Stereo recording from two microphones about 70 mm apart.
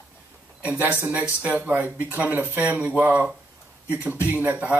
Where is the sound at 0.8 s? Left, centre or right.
Right.